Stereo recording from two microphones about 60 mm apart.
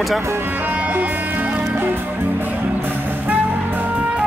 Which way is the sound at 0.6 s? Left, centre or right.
Right.